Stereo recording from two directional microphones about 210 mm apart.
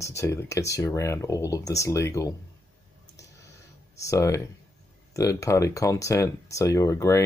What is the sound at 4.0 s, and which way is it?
Speech, 15° left (ahead or behind).